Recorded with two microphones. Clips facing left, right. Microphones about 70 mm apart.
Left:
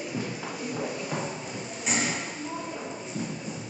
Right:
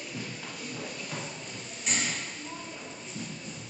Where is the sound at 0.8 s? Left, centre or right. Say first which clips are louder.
Left 8 dB; centre.